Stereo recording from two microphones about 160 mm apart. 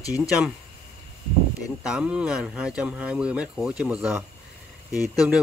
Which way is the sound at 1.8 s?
5° right (ahead or behind).